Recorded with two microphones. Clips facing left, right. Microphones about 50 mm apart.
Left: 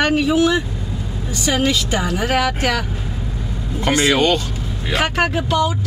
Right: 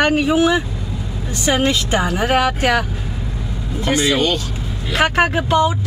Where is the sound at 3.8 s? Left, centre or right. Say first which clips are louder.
Left 1 dB; left.